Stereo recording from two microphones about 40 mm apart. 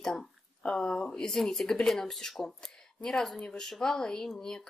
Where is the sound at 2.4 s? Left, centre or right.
Left.